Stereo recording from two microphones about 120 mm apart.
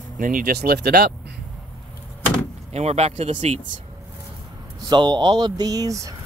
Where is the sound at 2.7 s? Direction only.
60° right (ahead or behind).